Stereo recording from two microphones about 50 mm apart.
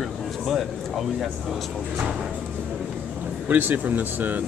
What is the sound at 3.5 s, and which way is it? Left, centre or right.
Speech, right.